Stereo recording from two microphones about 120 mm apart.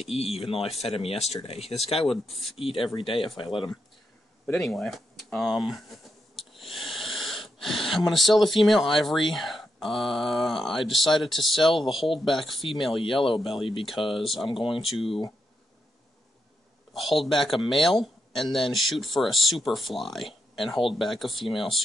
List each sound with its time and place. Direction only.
0.2 s speech: 55° left (ahead or behind)
4.5 s speech: centre (ahead or behind)
14.5 s speech: 45° left (ahead or behind)
16.9 s speech: centre (ahead or behind)